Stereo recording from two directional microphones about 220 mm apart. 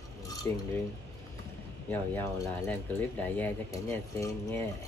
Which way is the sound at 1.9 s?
10° left (ahead or behind).